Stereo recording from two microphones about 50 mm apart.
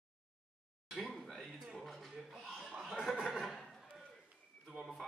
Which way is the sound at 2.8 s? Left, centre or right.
Centre.